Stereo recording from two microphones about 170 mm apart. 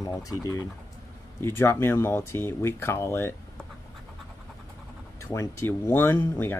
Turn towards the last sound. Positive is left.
turn(degrees=15)  # may be behind; listen again after turning